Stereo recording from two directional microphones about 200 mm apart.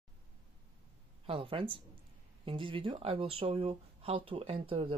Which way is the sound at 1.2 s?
25° right (ahead or behind).